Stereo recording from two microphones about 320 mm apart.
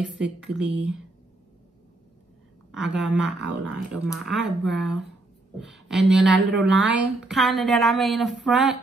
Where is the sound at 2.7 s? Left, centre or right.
Centre.